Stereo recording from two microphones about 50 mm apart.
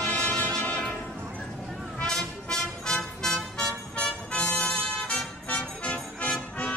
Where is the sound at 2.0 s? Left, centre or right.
Centre.